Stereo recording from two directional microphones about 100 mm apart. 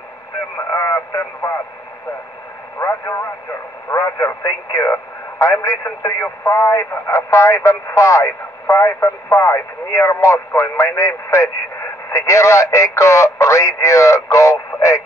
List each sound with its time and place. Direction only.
0.7 s radio: 30° left (ahead or behind)
2.8 s speech: 30° left (ahead or behind)